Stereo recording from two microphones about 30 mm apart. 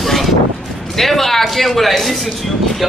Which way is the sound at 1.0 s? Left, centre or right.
Centre.